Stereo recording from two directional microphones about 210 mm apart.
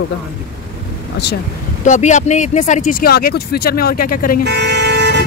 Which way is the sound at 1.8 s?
35° left (ahead or behind).